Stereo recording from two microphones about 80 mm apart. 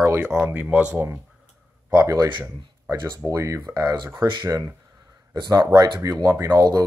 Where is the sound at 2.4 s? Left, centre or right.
Right.